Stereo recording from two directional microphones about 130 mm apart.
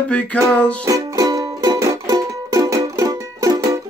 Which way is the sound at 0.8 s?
25° right (ahead or behind).